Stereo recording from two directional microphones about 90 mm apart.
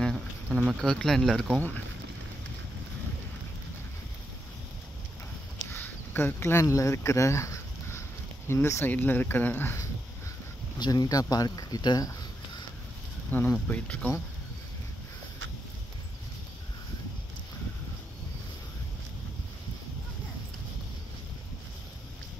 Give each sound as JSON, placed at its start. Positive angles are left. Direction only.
{"t": 0.0, "sound": "speech", "side_deg": 0}
{"t": 5.7, "sound": "a sound", "side_deg": 25}
{"t": 8.5, "sound": "speech", "side_deg": 30}
{"t": 10.8, "sound": "speech", "side_deg": 45}
{"t": 13.3, "sound": "speech", "side_deg": 20}